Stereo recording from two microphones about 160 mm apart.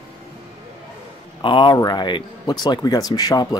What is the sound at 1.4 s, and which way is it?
Speech, 30° left (ahead or behind).